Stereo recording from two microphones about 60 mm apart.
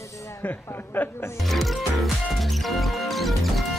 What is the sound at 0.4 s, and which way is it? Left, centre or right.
Speech, left.